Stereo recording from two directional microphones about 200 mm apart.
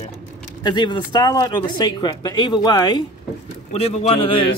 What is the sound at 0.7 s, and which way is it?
Speech, 20° left (ahead or behind).